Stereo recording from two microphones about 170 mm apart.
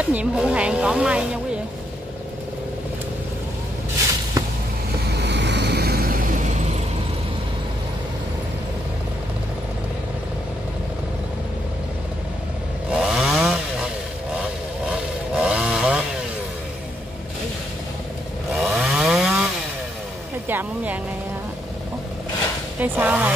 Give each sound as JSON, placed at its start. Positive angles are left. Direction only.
{"t": 0.0, "sound": "speech", "side_deg": -5}
{"t": 5.2, "sound": "vehicle", "side_deg": -90}
{"t": 12.9, "sound": "chainsaw", "side_deg": -5}
{"t": 14.9, "sound": "vehicle", "side_deg": -5}
{"t": 18.5, "sound": "chainsaw", "side_deg": 0}
{"t": 20.4, "sound": "a sound", "side_deg": -10}
{"t": 22.8, "sound": "speech", "side_deg": -10}